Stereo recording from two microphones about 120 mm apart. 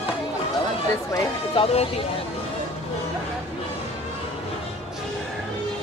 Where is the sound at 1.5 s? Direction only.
55° left (ahead or behind).